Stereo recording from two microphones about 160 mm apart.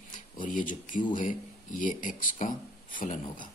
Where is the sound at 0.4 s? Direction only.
55° left (ahead or behind).